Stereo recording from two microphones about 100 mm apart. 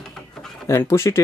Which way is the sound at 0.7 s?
30° left (ahead or behind).